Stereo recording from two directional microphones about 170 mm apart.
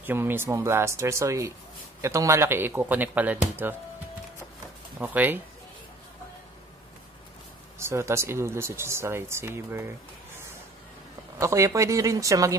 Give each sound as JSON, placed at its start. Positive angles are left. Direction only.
{"t": 0.0, "sound": "speech", "side_deg": -10}
{"t": 4.9, "sound": "speech", "side_deg": -5}
{"t": 7.8, "sound": "speech", "side_deg": -15}
{"t": 11.3, "sound": "speech", "side_deg": -20}